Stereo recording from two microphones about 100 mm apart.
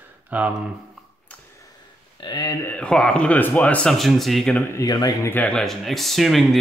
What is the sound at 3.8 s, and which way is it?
Speech, centre (ahead or behind).